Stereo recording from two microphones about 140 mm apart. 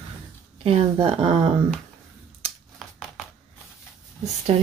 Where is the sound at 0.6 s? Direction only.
45° right (ahead or behind).